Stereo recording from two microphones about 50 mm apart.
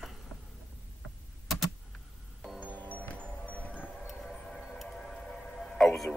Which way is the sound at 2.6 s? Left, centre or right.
Left.